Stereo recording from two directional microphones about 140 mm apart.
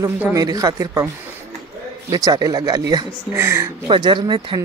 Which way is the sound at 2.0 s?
25° right (ahead or behind).